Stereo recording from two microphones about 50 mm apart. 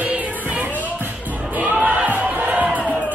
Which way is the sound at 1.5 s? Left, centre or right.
Right.